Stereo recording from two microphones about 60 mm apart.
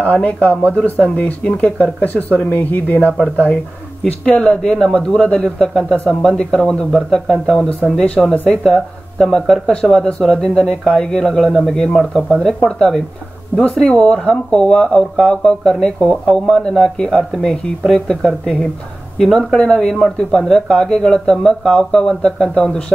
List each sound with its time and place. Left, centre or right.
0.0 s speech: left
4.2 s speech: centre